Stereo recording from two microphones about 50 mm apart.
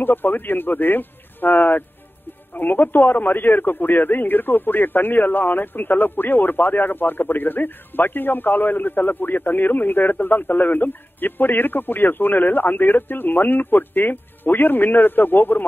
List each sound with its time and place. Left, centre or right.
0.0 s speech: left